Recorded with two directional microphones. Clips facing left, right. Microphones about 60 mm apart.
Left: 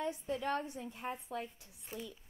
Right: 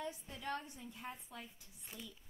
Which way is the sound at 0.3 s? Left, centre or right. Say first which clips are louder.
Left 8 dB; left.